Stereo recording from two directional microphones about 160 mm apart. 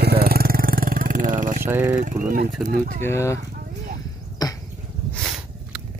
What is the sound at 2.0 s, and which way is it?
Speech, 55° right (ahead or behind).